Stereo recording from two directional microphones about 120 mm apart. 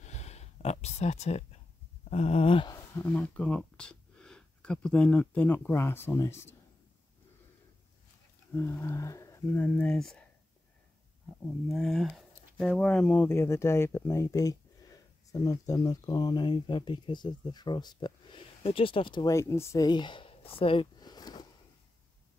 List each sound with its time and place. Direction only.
0.0 s a sound: 70° left (ahead or behind); by 2.7 s 50° left (ahead or behind)
3.0 s speech: 10° left (ahead or behind)
8.5 s speech: 20° left (ahead or behind)
9.6 s speech: 10° left (ahead or behind)
11.7 s speech: 5° left (ahead or behind); by 19.2 s 45° left (ahead or behind)
19.2 s speech: 25° left (ahead or behind)
19.9 s speech: 40° left (ahead or behind)
21.0 s a sound: 35° left (ahead or behind)